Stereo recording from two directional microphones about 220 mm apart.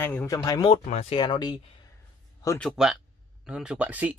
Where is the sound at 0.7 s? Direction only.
30° left (ahead or behind).